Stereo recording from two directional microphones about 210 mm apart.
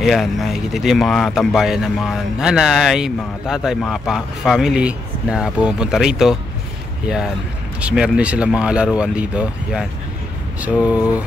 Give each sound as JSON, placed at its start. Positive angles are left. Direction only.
{"t": 0.0, "sound": "speech", "side_deg": 0}
{"t": 7.8, "sound": "speech", "side_deg": -5}